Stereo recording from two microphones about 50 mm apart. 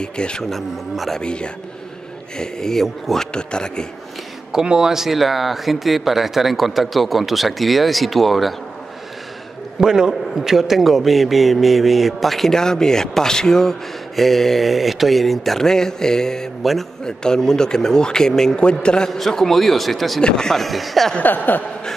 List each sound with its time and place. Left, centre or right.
0.0 s speech: centre
0.5 s a man's voice: centre
1.2 s a man's voice: centre
4.5 s a man's voice: centre
9.8 s a man's voice: centre
19.0 s a man's voice: centre
20.2 s a man's voice: centre
21.2 s a sound: left